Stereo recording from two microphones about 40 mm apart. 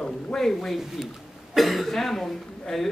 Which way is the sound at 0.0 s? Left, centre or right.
Centre.